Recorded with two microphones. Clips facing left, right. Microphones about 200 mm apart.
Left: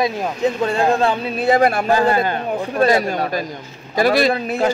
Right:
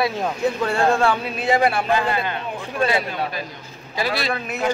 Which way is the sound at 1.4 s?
40° left (ahead or behind).